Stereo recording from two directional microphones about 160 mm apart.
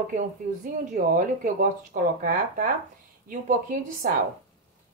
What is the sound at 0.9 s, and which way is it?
Speech, 55° right (ahead or behind).